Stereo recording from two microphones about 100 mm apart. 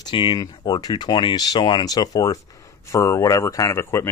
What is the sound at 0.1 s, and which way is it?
Speech, 50° left (ahead or behind).